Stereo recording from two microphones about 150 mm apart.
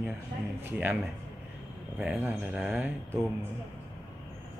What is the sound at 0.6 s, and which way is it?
Speech, 10° right (ahead or behind).